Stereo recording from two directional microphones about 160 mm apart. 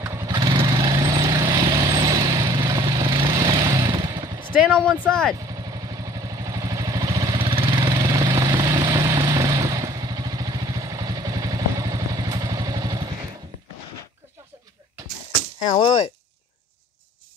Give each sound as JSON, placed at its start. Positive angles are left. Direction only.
{"t": 0.0, "sound": "vehicle", "side_deg": -15}
{"t": 0.3, "sound": "vehicle", "side_deg": -30}
{"t": 4.7, "sound": "speech", "side_deg": 5}
{"t": 5.5, "sound": "vehicle", "side_deg": -20}
{"t": 7.3, "sound": "vehicle", "side_deg": -35}
{"t": 15.6, "sound": "a sound", "side_deg": 30}